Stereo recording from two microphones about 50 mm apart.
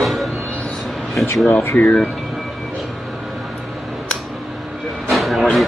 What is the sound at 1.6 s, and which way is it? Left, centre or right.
Speech, left.